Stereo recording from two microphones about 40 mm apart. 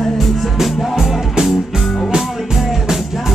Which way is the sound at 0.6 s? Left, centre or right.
Centre.